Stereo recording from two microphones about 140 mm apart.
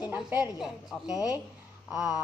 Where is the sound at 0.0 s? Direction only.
10° right (ahead or behind).